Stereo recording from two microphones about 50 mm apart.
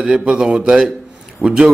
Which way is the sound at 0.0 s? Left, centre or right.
Centre.